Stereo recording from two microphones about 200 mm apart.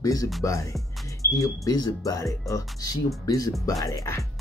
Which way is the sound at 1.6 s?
20° left (ahead or behind).